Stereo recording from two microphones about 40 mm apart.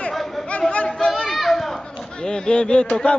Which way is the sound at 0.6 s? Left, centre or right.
Left.